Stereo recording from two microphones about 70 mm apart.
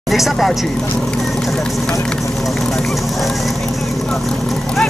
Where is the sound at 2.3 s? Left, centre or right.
Centre.